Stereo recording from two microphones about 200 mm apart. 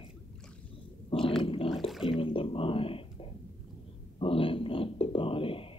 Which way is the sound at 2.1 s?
25° left (ahead or behind).